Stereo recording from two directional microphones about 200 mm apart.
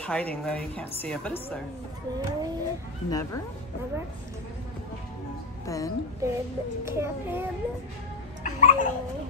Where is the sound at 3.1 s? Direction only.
15° left (ahead or behind).